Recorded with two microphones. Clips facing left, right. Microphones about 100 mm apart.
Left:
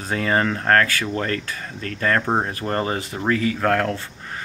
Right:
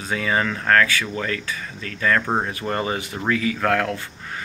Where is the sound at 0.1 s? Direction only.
40° left (ahead or behind).